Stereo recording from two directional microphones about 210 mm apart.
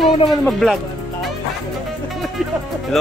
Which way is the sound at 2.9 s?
Centre (ahead or behind).